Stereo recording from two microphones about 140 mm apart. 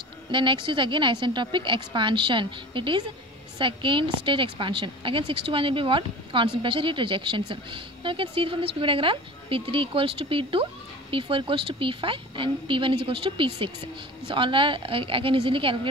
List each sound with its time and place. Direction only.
0.3 s a woman's voice: 35° right (ahead or behind)